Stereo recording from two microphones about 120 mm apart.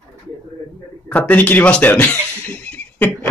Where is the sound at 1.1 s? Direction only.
15° left (ahead or behind).